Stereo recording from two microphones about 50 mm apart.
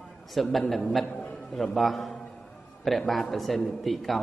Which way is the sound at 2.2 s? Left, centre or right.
Left.